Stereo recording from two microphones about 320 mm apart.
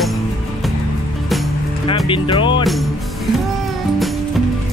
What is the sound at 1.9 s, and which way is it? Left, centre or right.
Speech, centre.